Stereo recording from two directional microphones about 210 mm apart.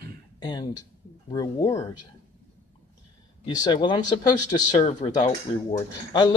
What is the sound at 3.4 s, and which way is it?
Speech, 20° left (ahead or behind).